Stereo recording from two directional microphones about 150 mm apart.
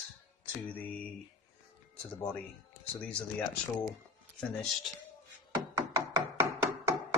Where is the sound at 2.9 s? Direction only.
5° left (ahead or behind).